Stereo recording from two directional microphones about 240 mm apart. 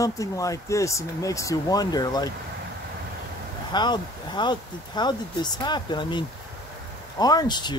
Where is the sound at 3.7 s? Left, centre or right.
Centre.